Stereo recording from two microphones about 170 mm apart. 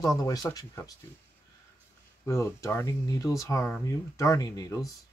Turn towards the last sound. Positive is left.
turn(degrees=20)  # may be behind; listen again after turning